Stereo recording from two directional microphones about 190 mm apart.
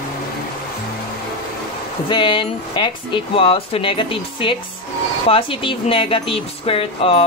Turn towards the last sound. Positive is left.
turn(degrees=30)  # may be behind; listen again after turning